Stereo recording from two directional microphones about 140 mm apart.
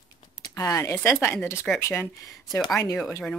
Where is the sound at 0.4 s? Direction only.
25° left (ahead or behind).